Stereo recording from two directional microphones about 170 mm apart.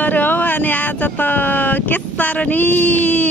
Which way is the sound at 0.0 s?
10° left (ahead or behind).